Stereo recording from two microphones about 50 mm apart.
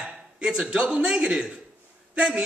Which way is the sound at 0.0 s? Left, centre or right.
Centre.